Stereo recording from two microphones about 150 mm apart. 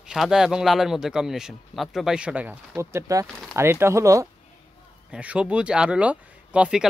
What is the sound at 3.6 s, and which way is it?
Speech, 15° right (ahead or behind).